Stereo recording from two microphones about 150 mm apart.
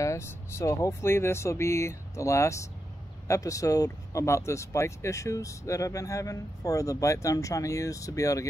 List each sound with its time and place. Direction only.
0.0 s speech: 20° left (ahead or behind)